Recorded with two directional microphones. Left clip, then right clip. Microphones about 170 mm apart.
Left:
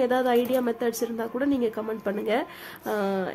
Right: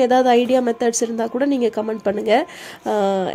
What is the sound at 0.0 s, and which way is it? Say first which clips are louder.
Speech: right 8 dB; 35° right (ahead or behind).